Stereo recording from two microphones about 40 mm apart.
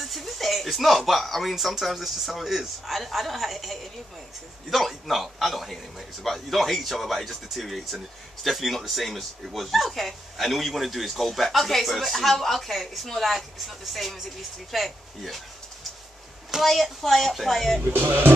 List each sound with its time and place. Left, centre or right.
0.0 s a sound: centre
1.5 s speech: centre
16.6 s speech: centre
17.8 s speech: right